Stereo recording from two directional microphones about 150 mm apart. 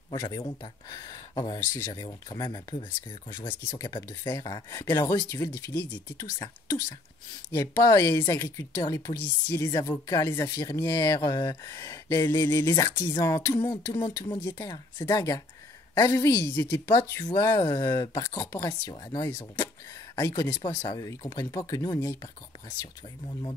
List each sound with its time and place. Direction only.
0.1 s a woman's voice: 25° left (ahead or behind)
1.7 s speech: 15° left (ahead or behind)
2.0 s a woman's voice: 30° left (ahead or behind)